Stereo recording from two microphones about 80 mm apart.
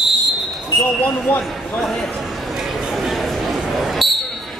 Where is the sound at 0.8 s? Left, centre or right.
Left.